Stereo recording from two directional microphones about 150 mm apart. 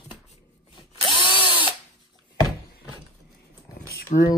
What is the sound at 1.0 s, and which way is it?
Drill, 30° left (ahead or behind).